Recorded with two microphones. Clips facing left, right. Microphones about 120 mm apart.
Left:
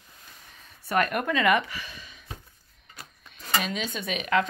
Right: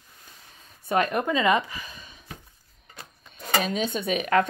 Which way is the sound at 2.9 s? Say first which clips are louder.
Right 1 dB; 25° right (ahead or behind).